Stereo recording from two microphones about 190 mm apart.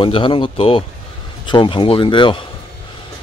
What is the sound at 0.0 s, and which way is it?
Speech, 25° left (ahead or behind).